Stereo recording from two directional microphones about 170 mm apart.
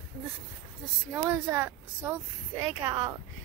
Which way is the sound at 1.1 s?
15° right (ahead or behind).